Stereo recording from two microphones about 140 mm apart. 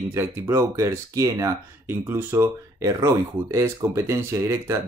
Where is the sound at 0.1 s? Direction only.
20° right (ahead or behind).